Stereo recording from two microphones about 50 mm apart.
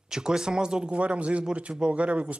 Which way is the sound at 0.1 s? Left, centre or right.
Centre.